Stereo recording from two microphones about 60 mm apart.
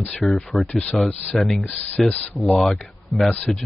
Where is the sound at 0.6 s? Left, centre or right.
Left.